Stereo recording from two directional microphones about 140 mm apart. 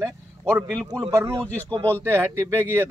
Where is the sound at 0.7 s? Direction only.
5° left (ahead or behind).